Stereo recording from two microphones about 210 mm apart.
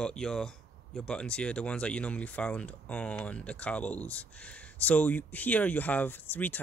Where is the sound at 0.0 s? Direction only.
5° left (ahead or behind).